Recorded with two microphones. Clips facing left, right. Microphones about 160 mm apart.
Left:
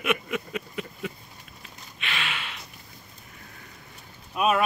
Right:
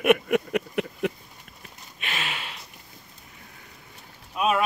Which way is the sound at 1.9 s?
40° right (ahead or behind).